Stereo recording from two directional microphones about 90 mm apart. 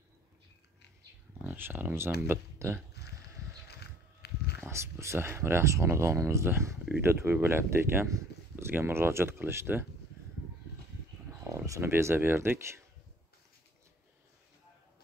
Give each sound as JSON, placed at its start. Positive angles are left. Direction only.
{"t": 1.4, "sound": "speech", "side_deg": -20}
{"t": 4.6, "sound": "speech", "side_deg": -30}
{"t": 11.4, "sound": "speech", "side_deg": -35}